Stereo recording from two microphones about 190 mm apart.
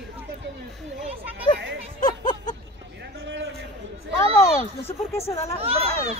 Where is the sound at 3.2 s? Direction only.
75° right (ahead or behind).